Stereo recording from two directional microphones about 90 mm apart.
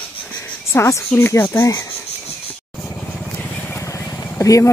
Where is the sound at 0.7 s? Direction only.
35° left (ahead or behind).